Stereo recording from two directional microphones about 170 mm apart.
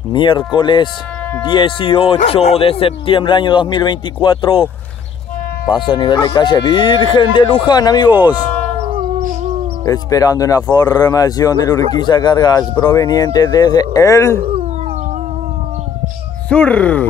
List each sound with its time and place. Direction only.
0.1 s speech: 30° left (ahead or behind)
5.9 s speech: 25° left (ahead or behind)
8.9 s howl: 45° right (ahead or behind)
9.8 s speech: 20° left (ahead or behind)
14.4 s cat: 35° right (ahead or behind)
16.4 s speech: 5° left (ahead or behind)